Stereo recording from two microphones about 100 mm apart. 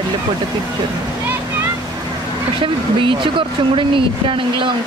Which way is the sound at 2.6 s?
55° right (ahead or behind).